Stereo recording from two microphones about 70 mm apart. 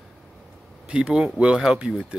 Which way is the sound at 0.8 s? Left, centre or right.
Centre.